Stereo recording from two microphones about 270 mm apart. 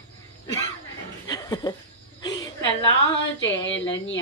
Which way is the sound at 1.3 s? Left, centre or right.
Centre.